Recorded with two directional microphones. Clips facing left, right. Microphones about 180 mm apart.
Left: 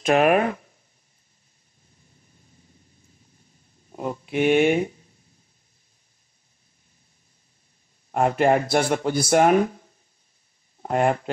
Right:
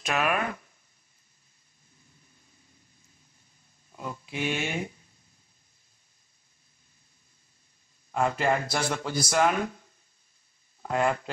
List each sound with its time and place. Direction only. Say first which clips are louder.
0.0 s speech: left 10 dB; 50° left (ahead or behind)
3.9 s speech: left 10 dB; 50° left (ahead or behind)
8.1 s speech: left 7 dB; 55° left (ahead or behind)
10.8 s speech: left 5 dB; 50° left (ahead or behind)